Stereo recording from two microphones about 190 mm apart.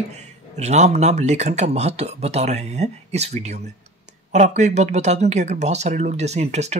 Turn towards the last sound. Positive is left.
turn(degrees=-35)  # may be behind; listen again after turning